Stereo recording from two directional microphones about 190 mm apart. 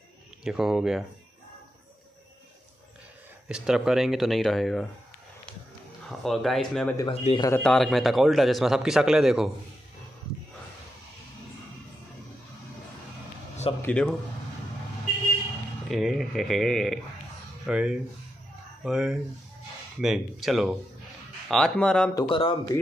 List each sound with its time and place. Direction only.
0.4 s speech: centre (ahead or behind)
3.4 s speech: 5° right (ahead or behind)
6.0 s speech: centre (ahead or behind)
7.1 s speech: 30° left (ahead or behind)
7.6 s speech: centre (ahead or behind)
13.8 s speech: 5° left (ahead or behind)
15.9 s speech: centre (ahead or behind)
22.1 s speech: 25° left (ahead or behind)